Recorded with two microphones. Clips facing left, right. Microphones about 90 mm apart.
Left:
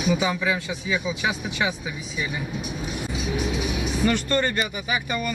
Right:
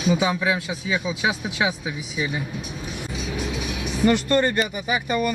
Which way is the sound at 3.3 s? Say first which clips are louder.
Left 2 dB; 5° left (ahead or behind).